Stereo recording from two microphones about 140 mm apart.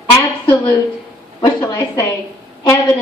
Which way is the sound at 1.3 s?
30° left (ahead or behind).